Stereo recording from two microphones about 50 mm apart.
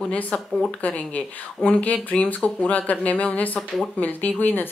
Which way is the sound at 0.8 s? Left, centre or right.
Left.